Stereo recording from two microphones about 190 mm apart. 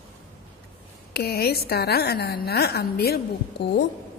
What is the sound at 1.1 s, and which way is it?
A woman's voice, 55° left (ahead or behind).